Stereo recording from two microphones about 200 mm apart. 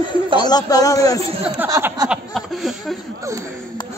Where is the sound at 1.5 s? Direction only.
10° right (ahead or behind).